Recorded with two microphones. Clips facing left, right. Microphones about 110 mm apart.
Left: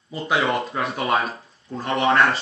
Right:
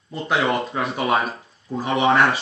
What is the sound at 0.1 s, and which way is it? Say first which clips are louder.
Speech: right 1 dB; centre (ahead or behind).